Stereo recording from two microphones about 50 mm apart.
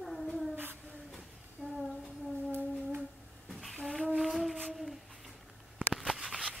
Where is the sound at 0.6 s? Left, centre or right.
Right.